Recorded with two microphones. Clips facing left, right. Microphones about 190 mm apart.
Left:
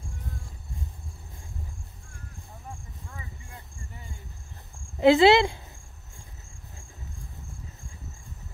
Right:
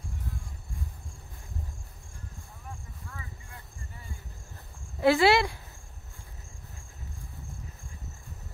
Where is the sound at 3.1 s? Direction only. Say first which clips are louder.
Left 2 dB; 25° left (ahead or behind).